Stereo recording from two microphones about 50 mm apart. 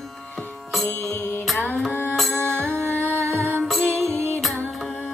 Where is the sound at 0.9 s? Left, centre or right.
Left.